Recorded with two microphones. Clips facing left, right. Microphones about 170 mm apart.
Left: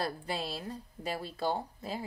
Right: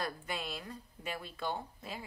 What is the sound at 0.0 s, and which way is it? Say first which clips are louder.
Speech: left 4 dB; 35° left (ahead or behind).